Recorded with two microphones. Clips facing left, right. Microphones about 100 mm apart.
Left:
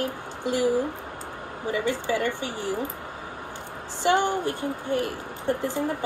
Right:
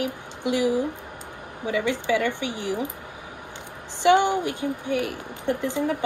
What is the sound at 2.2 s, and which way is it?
Speech, 15° right (ahead or behind).